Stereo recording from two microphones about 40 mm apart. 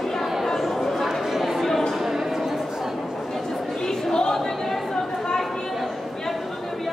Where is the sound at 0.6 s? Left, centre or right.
Centre.